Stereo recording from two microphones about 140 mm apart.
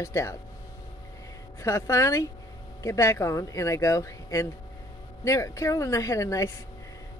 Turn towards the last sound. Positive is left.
turn(degrees=20)  # may be behind; listen again after turning